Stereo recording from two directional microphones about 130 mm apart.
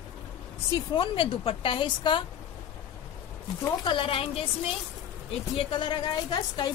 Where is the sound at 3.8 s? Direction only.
40° left (ahead or behind).